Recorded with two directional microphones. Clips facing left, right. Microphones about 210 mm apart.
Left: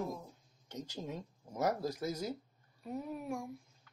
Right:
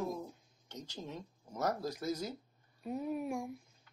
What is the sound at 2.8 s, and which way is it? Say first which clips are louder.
Speech: right 3 dB; 15° right (ahead or behind).